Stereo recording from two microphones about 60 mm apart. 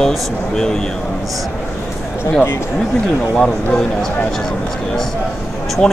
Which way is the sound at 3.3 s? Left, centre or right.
Centre.